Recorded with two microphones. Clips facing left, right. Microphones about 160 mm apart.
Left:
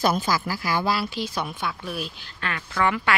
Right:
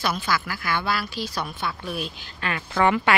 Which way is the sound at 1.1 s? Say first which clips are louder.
Left 1 dB; 20° left (ahead or behind).